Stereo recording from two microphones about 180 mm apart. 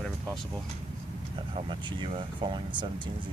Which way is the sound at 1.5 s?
30° right (ahead or behind).